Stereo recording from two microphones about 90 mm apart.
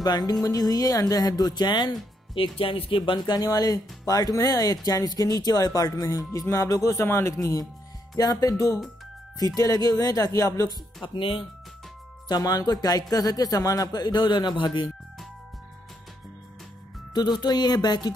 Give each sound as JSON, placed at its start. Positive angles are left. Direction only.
{"t": 0.0, "sound": "speech", "side_deg": 50}
{"t": 2.6, "sound": "speech", "side_deg": 85}
{"t": 6.4, "sound": "music", "side_deg": 40}
{"t": 7.3, "sound": "music", "side_deg": 40}
{"t": 8.2, "sound": "speech", "side_deg": 45}
{"t": 9.6, "sound": "music", "side_deg": 45}
{"t": 11.1, "sound": "speech", "side_deg": 90}
{"t": 12.3, "sound": "speech", "side_deg": 45}
{"t": 17.1, "sound": "speech", "side_deg": 50}